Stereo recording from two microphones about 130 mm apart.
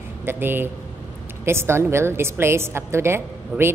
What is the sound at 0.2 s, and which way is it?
A man's voice, 15° right (ahead or behind).